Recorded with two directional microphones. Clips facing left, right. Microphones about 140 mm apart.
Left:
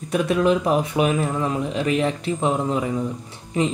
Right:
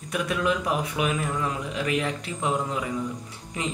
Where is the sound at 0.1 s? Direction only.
30° left (ahead or behind).